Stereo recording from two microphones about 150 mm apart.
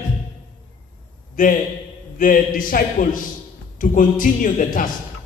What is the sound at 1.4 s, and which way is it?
A man's voice, 65° left (ahead or behind).